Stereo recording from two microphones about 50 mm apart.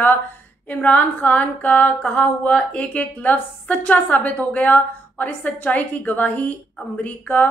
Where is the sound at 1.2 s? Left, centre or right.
Left.